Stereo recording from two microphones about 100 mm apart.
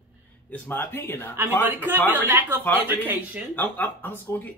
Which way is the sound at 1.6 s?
20° right (ahead or behind).